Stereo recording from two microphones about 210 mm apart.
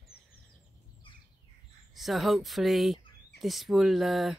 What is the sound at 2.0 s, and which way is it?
Speech, centre (ahead or behind).